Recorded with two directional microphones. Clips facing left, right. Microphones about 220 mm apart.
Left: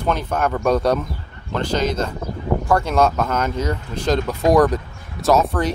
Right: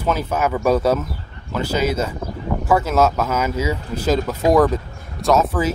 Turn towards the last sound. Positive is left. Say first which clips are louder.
# even
turn(degrees=-5)  # may be behind; listen again after turning